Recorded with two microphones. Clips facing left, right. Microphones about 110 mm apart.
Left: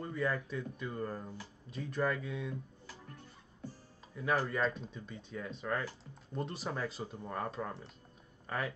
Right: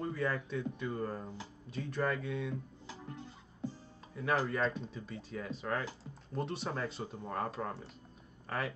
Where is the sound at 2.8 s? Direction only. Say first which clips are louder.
Right 5 dB; 25° right (ahead or behind).